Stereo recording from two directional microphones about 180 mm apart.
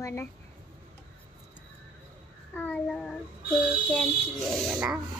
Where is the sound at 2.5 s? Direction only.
10° left (ahead or behind).